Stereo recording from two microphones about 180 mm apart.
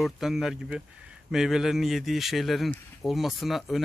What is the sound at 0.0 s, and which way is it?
Speech, centre (ahead or behind).